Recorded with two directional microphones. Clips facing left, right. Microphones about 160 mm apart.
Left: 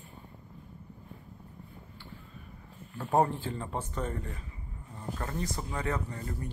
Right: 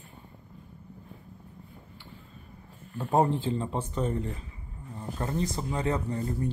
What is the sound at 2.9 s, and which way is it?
Speech, 20° right (ahead or behind).